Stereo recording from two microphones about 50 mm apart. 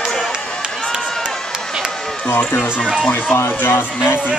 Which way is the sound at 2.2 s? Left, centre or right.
Left.